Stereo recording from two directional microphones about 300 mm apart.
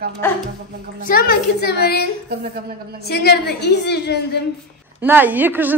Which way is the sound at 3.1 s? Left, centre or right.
Left.